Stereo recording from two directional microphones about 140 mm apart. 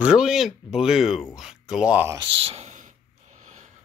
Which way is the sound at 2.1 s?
45° right (ahead or behind).